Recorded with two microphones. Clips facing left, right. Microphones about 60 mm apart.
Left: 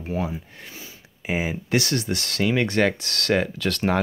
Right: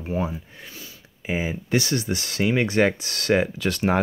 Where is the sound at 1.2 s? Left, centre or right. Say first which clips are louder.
Left 1 dB; centre.